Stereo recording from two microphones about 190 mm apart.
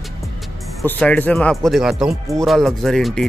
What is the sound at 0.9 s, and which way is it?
Speech, 10° left (ahead or behind).